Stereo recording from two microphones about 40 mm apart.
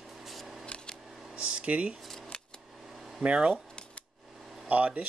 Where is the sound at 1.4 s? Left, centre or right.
Right.